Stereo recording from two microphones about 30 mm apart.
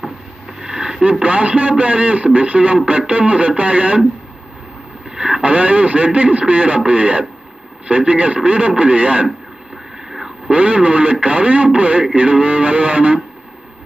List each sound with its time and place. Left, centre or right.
0.6 s a sound: centre
1.2 s speech: right
2.7 s speech: right
5.1 s vehicle: right
5.4 s speech: right
10.0 s vehicle: centre
10.5 s speech: right